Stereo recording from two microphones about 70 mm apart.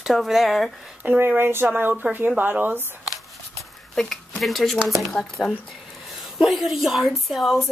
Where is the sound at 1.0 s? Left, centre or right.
Right.